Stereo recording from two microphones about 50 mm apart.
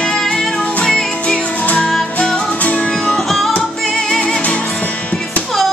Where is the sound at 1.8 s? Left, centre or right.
Centre.